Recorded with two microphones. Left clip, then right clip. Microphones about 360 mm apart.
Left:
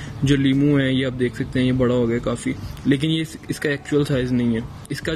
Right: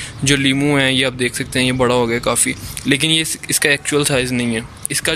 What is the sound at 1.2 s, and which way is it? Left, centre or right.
Speech, right.